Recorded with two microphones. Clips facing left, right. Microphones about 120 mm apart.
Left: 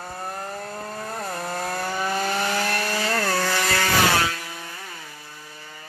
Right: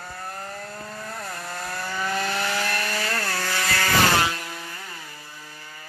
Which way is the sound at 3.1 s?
55° left (ahead or behind).